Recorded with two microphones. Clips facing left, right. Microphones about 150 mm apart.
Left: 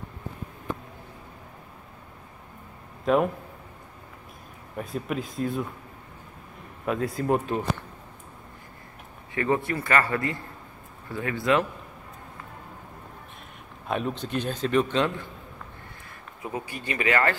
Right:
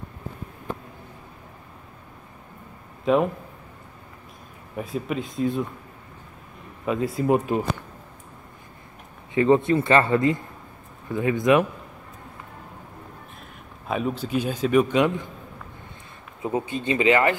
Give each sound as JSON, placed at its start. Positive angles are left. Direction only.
{"t": 3.1, "sound": "speech", "side_deg": 0}
{"t": 4.7, "sound": "speech", "side_deg": 0}
{"t": 6.9, "sound": "speech", "side_deg": 0}
{"t": 7.3, "sound": "speech", "side_deg": -10}
{"t": 9.3, "sound": "a man's voice", "side_deg": -20}
{"t": 13.8, "sound": "a man's voice", "side_deg": -5}
{"t": 16.4, "sound": "a man's voice", "side_deg": -25}